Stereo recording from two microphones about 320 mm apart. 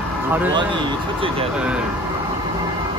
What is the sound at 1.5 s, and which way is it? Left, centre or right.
Speech, centre.